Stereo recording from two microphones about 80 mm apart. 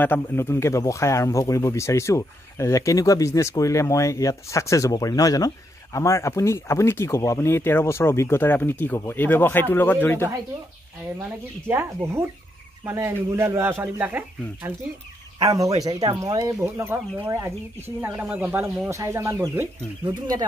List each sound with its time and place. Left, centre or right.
0.0 s speech: left
5.9 s speech: left
11.2 s speech: right
15.4 s speech: right
16.8 s speech: right
18.9 s speech: right
20.1 s speech: right